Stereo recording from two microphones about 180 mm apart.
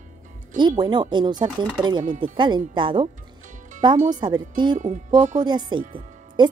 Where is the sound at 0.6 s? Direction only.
25° right (ahead or behind).